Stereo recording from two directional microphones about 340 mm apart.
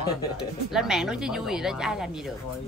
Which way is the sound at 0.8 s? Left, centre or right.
Centre.